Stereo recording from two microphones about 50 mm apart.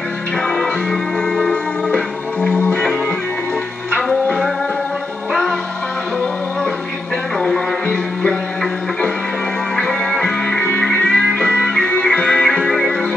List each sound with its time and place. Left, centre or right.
1.5 s music: centre
7.3 s music: centre
9.8 s music: centre